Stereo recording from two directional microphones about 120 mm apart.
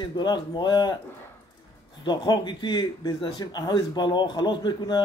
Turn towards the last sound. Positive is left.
turn(degrees=40)  # may be behind; listen again after turning